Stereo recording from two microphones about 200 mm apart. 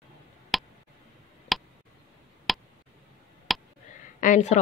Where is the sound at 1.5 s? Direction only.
Centre (ahead or behind).